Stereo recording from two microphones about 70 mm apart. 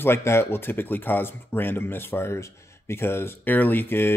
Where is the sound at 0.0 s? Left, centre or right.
Left.